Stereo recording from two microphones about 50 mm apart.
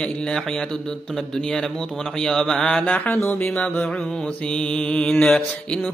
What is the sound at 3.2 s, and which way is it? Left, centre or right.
Music, left.